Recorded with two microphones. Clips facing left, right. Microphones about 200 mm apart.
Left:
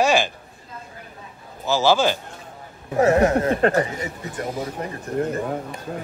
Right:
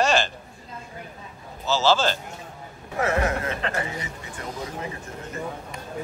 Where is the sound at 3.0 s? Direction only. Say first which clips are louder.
Left 8 dB; 40° left (ahead or behind).